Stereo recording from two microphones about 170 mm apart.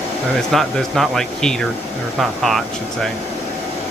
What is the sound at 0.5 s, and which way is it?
Speech, centre (ahead or behind).